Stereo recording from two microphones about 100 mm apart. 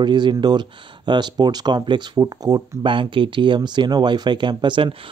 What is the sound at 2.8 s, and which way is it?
Speech, 60° right (ahead or behind).